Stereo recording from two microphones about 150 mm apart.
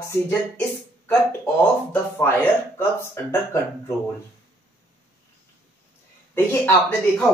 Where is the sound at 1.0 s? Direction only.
15° left (ahead or behind).